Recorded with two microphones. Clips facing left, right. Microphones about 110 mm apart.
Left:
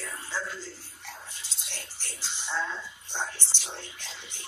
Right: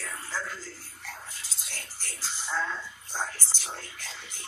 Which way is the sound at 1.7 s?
5° right (ahead or behind).